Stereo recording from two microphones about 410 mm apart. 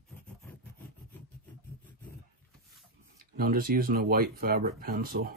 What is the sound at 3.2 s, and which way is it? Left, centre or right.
Speech, right.